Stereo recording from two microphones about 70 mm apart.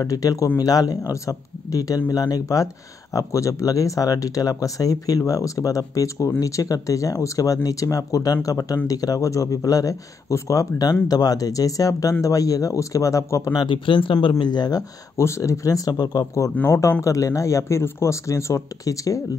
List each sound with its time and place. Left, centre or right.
0.0 s speech: left
14.4 s speech: left
15.1 s speech: left
16.6 s speech: left